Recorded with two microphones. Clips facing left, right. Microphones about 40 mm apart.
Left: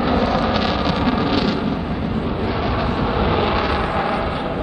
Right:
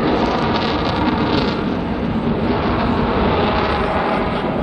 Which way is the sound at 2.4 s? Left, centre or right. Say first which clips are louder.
Right 3 dB; centre.